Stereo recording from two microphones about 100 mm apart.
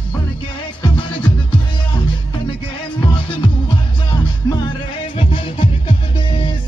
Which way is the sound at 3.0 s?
55° left (ahead or behind).